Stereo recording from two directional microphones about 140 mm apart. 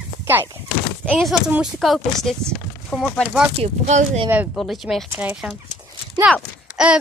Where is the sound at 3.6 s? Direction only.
55° right (ahead or behind).